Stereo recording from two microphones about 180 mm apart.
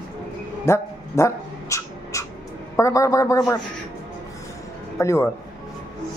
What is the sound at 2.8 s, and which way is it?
Speech, 15° left (ahead or behind).